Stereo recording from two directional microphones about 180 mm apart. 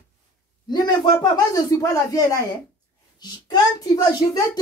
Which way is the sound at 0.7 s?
20° left (ahead or behind).